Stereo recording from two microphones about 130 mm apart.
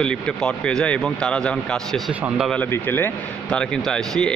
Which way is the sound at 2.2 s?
10° right (ahead or behind).